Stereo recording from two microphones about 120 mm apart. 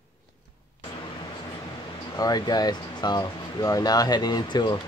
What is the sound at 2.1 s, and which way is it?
Speech, 35° left (ahead or behind).